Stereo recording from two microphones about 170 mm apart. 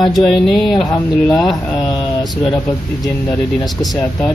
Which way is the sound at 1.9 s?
25° left (ahead or behind).